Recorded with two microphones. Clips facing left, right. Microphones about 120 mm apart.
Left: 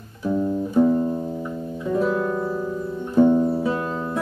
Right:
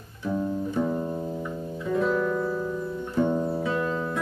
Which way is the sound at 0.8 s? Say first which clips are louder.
Left 10 dB; 20° left (ahead or behind).